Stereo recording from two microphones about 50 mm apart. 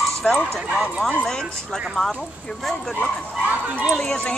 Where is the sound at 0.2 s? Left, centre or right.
Centre.